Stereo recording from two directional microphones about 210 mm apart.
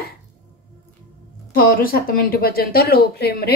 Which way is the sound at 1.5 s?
45° left (ahead or behind).